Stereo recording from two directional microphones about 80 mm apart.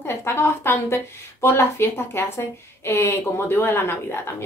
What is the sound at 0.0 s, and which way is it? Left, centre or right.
A woman's voice, left.